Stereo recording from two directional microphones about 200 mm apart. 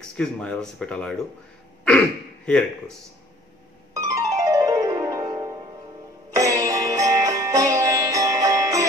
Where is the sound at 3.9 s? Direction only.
15° right (ahead or behind).